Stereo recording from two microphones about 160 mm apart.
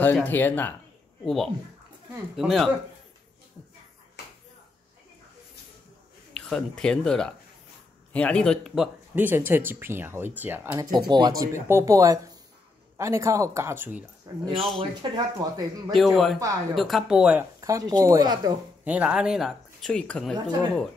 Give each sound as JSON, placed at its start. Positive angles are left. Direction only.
{"t": 0.0, "sound": "speech", "side_deg": 10}
{"t": 1.2, "sound": "speech", "side_deg": 0}
{"t": 6.3, "sound": "speech", "side_deg": 5}
{"t": 10.9, "sound": "speech", "side_deg": -25}
{"t": 14.3, "sound": "speech", "side_deg": -25}
{"t": 15.9, "sound": "speech", "side_deg": 0}
{"t": 17.6, "sound": "speech", "side_deg": -20}
{"t": 18.9, "sound": "speech", "side_deg": -5}